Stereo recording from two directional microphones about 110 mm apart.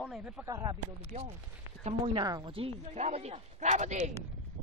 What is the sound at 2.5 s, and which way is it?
Speech, 60° right (ahead or behind).